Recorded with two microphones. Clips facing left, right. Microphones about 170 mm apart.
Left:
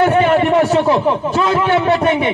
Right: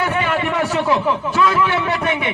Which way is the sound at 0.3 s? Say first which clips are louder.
Left 7 dB; 30° left (ahead or behind).